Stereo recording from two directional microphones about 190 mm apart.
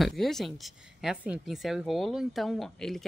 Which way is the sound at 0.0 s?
Centre (ahead or behind).